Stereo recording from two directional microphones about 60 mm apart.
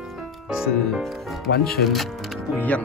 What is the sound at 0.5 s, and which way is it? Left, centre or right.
Speech, centre.